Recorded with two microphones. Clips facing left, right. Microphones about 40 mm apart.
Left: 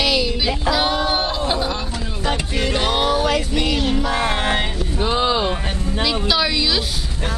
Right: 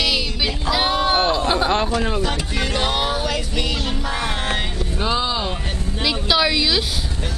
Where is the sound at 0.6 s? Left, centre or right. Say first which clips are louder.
Right 1 dB; centre.